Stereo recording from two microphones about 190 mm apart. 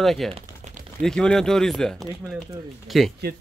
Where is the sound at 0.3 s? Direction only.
40° right (ahead or behind).